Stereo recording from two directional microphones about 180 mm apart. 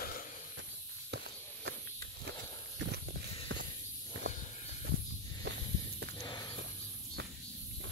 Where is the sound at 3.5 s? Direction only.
90° right.